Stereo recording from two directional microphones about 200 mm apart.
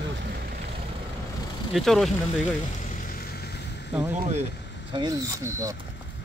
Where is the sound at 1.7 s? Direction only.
Centre (ahead or behind).